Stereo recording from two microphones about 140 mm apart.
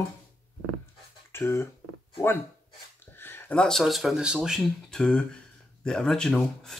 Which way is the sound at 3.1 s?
15° left (ahead or behind).